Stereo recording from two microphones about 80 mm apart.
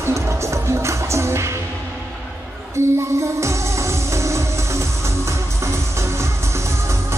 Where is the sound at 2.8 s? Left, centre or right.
Right.